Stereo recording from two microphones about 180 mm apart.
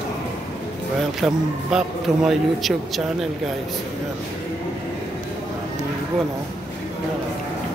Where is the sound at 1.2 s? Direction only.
5° right (ahead or behind).